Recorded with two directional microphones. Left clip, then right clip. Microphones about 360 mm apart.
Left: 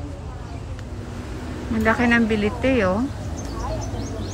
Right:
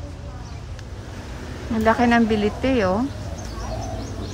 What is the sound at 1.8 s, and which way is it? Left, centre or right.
Speech, centre.